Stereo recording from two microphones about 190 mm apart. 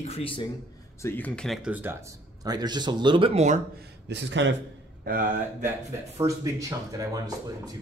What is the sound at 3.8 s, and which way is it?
Speech, 65° right (ahead or behind).